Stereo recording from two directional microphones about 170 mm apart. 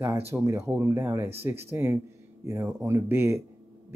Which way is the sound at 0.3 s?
15° right (ahead or behind).